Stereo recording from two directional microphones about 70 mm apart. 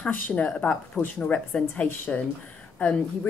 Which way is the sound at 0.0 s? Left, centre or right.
Centre.